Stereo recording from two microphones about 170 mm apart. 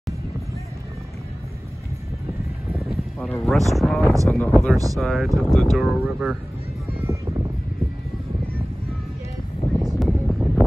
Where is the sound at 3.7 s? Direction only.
Centre (ahead or behind).